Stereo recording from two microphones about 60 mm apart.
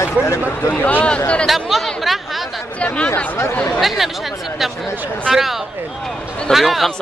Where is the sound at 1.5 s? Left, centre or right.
Centre.